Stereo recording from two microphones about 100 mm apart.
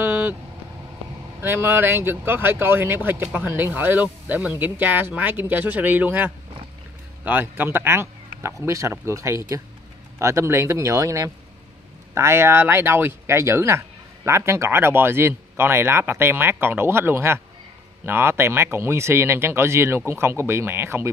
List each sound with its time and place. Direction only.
0.0 s vehicle: 20° right (ahead or behind)
1.4 s speech: 20° right (ahead or behind)